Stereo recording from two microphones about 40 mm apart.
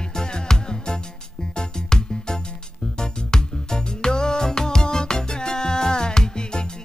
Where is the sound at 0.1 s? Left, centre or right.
Centre.